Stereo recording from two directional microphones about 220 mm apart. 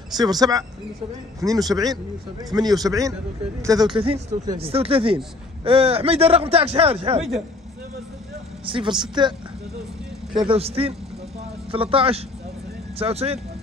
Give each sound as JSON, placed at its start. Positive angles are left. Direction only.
{"t": 0.2, "sound": "a man's voice", "side_deg": -15}
{"t": 8.6, "sound": "speech", "side_deg": -25}